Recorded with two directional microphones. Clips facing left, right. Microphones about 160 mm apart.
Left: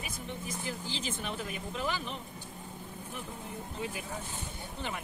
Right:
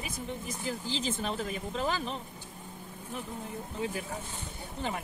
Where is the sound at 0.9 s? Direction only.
35° right (ahead or behind).